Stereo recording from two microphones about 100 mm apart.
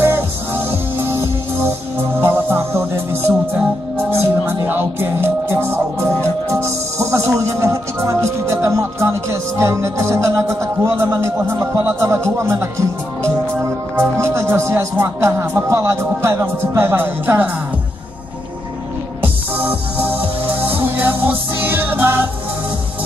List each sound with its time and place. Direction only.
0.7 s music: 20° right (ahead or behind)
19.2 s music: 20° right (ahead or behind)